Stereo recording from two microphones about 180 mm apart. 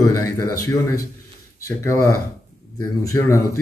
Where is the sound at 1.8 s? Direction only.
15° left (ahead or behind).